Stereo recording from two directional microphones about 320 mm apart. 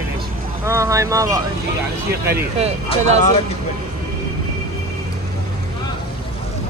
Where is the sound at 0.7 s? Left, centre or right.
Centre.